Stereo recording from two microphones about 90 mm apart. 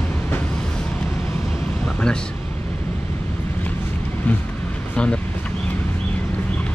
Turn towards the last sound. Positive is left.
turn(degrees=10)  # may be behind; listen again after turning